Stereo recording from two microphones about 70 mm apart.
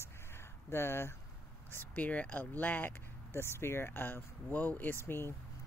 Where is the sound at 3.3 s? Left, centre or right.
Left.